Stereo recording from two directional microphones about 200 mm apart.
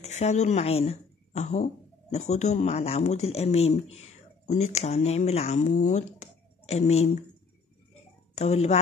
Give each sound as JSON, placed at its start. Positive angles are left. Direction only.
{"t": 0.0, "sound": "speech", "side_deg": 35}
{"t": 8.4, "sound": "speech", "side_deg": 35}